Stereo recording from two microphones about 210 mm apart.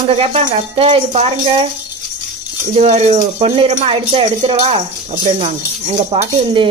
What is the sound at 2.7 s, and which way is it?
Speech, 30° right (ahead or behind).